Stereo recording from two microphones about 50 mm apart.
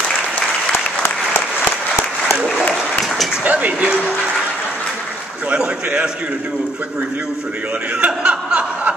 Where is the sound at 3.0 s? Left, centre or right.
Centre.